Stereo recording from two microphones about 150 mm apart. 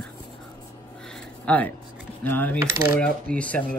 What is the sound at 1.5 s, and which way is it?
Speech, 10° left (ahead or behind).